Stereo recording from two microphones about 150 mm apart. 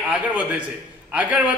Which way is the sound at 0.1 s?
10° right (ahead or behind).